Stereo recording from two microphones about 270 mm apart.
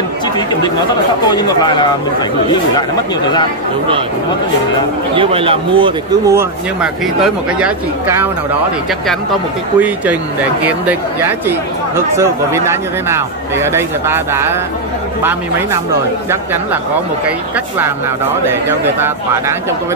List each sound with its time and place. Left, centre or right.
1.3 s speech: centre
5.1 s speech: centre
9.8 s speech: centre
18.7 s speech: centre